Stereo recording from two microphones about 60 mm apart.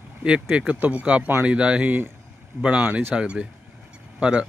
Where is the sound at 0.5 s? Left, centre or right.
Right.